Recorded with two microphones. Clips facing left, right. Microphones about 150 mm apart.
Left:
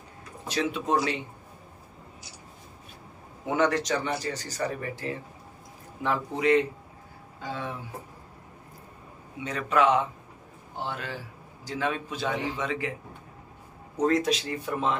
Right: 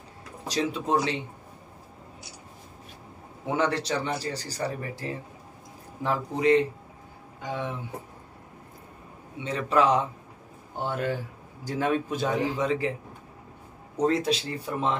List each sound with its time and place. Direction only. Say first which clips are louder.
0.5 s speech: right 1 dB; 35° right (ahead or behind)
3.5 s speech: left 2 dB; 30° right (ahead or behind)
7.4 s speech: right 2 dB; 15° right (ahead or behind)
9.4 s speech: right 1 dB; 30° right (ahead or behind)
10.8 s a man's voice: right 6 dB; 45° right (ahead or behind)
14.0 s speech: even; 30° right (ahead or behind)